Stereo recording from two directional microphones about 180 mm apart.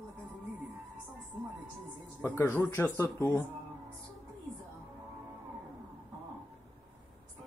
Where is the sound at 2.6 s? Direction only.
10° left (ahead or behind).